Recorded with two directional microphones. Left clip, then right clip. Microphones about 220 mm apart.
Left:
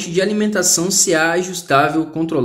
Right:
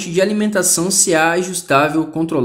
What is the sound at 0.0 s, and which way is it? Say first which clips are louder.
Speech: right 1 dB; 5° right (ahead or behind).